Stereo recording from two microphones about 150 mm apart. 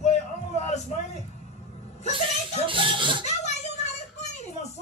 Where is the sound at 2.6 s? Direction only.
35° right (ahead or behind).